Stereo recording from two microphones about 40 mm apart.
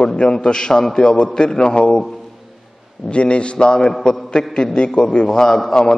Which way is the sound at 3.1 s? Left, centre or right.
Left.